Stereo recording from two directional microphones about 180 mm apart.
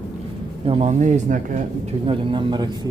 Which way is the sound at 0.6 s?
35° right (ahead or behind).